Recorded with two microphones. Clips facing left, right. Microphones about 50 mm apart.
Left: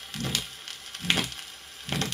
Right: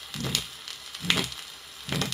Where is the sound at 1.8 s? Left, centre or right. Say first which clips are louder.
Even; left.